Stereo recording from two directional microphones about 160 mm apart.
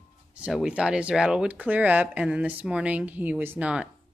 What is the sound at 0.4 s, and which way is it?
Speech, 5° right (ahead or behind).